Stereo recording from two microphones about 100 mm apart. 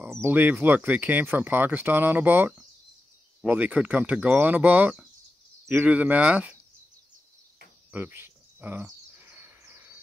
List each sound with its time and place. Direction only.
0.2 s speech: 20° right (ahead or behind)
7.9 s bird: 20° right (ahead or behind)
9.2 s bird vocalization: 20° right (ahead or behind)